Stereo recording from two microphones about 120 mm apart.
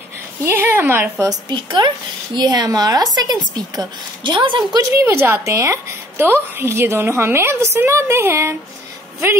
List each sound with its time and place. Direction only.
0.4 s a woman's voice: 20° right (ahead or behind)
1.2 s a woman's voice: 35° right (ahead or behind)
4.9 s a woman's voice: 25° right (ahead or behind)